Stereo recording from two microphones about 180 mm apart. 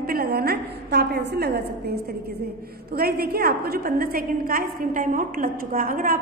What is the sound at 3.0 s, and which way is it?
A woman's voice, 60° right (ahead or behind).